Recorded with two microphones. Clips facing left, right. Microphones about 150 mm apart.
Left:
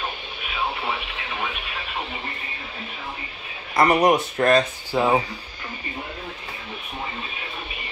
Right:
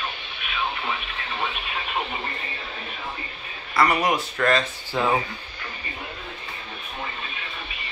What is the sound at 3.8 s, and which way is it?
Speech, 20° left (ahead or behind).